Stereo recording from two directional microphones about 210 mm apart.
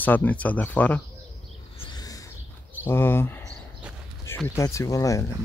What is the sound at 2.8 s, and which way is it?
Speech, 10° left (ahead or behind).